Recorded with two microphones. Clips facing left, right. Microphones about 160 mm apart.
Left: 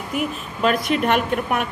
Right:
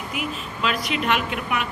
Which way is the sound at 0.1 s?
45° left (ahead or behind).